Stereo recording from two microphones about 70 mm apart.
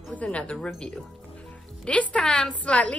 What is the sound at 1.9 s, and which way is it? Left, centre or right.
A woman's voice, centre.